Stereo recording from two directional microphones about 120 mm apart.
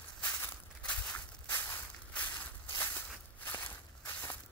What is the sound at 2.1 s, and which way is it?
Crushing, 15° left (ahead or behind).